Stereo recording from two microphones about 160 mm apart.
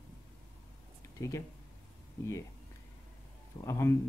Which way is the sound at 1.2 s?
20° left (ahead or behind).